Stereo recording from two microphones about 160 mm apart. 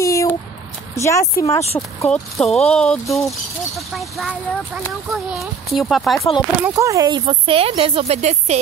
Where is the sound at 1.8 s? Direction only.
5° left (ahead or behind).